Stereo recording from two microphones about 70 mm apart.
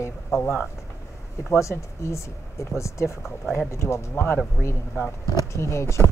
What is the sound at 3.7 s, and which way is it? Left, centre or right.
Speech, left.